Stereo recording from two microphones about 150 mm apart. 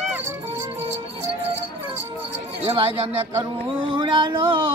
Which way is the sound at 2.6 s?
35° right (ahead or behind).